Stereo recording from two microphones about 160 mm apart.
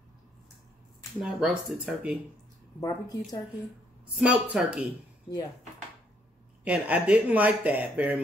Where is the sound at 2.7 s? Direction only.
25° left (ahead or behind).